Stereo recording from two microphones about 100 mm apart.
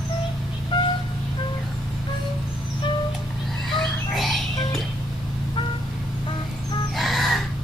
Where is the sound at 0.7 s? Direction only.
50° left (ahead or behind).